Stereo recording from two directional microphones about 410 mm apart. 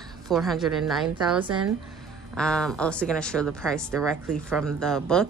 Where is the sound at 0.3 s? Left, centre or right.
Centre.